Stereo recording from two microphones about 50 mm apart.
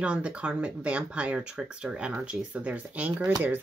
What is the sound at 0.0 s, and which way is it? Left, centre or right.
Speech, right.